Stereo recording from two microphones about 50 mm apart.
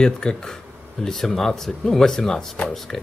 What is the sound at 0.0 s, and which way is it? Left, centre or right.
Speech, centre.